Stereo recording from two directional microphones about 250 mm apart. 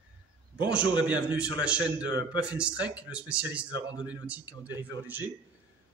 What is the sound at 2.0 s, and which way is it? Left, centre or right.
Speech, centre.